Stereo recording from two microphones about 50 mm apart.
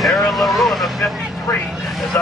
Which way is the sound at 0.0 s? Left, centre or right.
Centre.